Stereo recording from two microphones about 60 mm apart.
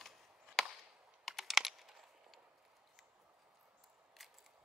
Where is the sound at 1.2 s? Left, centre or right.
Centre.